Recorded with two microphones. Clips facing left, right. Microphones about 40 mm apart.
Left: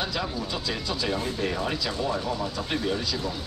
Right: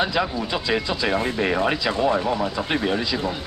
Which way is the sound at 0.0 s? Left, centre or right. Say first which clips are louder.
Right 7 dB; right.